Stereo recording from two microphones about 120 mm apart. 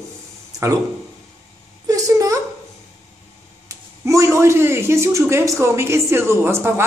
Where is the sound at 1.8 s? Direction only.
30° right (ahead or behind).